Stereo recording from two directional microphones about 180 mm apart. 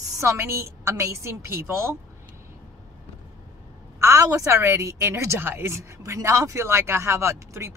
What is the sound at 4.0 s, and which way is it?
A woman's voice, 15° right (ahead or behind).